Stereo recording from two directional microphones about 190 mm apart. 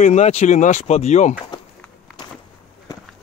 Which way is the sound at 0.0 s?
35° left (ahead or behind).